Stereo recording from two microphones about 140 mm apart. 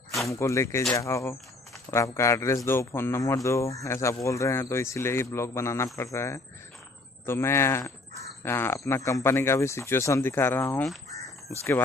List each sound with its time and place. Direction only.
0.3 s speech: 20° left (ahead or behind)